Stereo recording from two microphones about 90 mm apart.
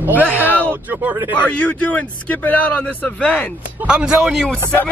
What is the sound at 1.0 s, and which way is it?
Speech, 20° right (ahead or behind).